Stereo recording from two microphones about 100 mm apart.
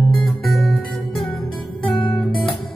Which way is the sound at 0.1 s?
Centre (ahead or behind).